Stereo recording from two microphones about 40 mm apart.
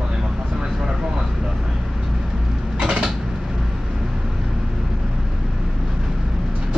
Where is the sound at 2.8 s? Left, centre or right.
Centre.